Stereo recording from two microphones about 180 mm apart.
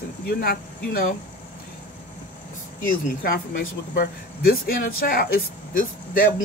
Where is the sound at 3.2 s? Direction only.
55° left (ahead or behind).